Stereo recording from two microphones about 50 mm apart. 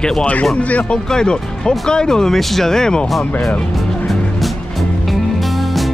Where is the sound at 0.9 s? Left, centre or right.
Centre.